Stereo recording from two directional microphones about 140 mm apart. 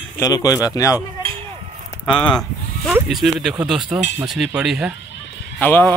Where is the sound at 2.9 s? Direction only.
Centre (ahead or behind).